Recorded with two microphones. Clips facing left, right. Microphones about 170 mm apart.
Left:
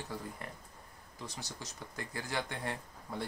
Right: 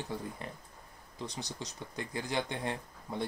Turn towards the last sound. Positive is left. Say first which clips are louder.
# right 3 dB
turn(degrees=-20)  # may be behind; listen again after turning